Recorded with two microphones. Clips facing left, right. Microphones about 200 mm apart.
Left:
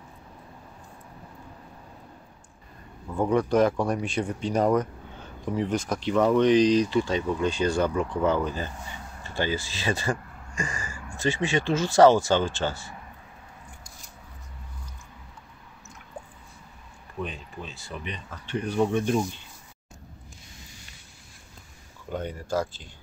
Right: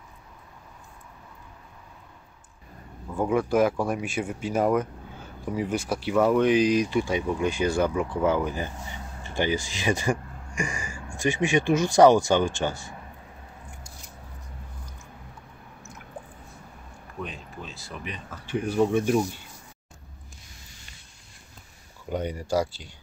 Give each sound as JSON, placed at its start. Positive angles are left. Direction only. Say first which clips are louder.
{"t": 3.2, "sound": "speech", "louder": "left 1 dB", "side_deg": -5}
{"t": 17.2, "sound": "speech", "louder": "left 2 dB", "side_deg": 0}
{"t": 22.1, "sound": "speech", "louder": "right 3 dB", "side_deg": -10}